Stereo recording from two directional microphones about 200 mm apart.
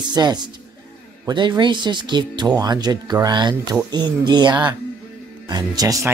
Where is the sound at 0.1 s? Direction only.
20° right (ahead or behind).